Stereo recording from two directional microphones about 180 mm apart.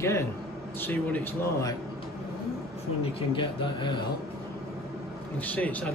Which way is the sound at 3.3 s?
25° left (ahead or behind).